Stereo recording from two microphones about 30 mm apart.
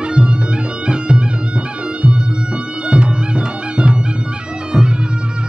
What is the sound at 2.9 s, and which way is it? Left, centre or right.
Music, right.